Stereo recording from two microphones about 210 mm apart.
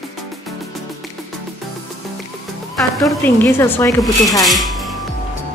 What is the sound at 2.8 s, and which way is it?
A woman's voice, centre (ahead or behind).